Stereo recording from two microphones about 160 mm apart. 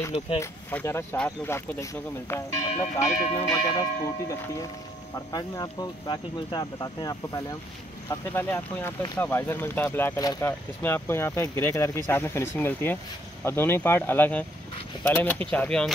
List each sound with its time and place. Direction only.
0.4 s speech: 15° left (ahead or behind)